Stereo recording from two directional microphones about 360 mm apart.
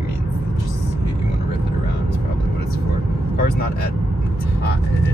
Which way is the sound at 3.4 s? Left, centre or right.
Left.